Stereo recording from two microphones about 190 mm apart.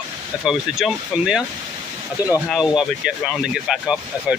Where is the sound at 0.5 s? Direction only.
Centre (ahead or behind).